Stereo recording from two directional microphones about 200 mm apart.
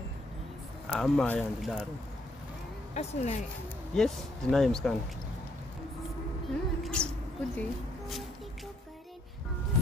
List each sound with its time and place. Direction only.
0.8 s speech: centre (ahead or behind)
2.9 s speech: 35° left (ahead or behind)
3.9 s speech: centre (ahead or behind)
6.8 s speech: 5° left (ahead or behind)